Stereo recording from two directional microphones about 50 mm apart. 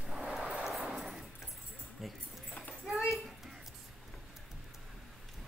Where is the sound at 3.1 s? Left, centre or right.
Centre.